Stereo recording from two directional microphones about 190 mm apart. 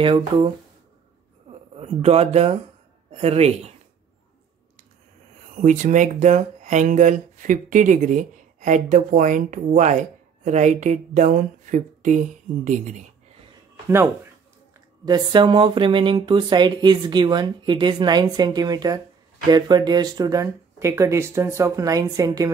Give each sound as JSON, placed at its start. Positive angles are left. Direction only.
{"t": 0.0, "sound": "speech", "side_deg": -25}
{"t": 1.5, "sound": "speech", "side_deg": -30}
{"t": 5.6, "sound": "speech", "side_deg": -40}
{"t": 13.8, "sound": "speech", "side_deg": -15}